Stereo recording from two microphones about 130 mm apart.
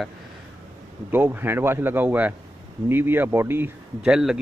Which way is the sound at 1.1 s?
15° right (ahead or behind).